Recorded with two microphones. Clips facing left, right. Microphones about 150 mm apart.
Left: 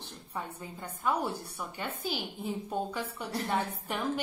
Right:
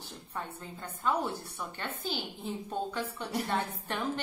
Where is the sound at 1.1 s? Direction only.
10° left (ahead or behind).